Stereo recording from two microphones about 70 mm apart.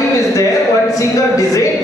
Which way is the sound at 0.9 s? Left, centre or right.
Left.